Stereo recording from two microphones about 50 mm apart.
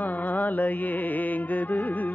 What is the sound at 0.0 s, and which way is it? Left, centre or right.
Music, left.